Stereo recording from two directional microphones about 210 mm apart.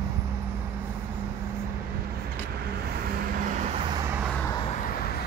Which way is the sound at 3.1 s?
40° right (ahead or behind).